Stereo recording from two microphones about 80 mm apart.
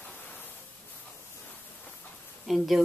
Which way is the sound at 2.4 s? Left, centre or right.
Centre.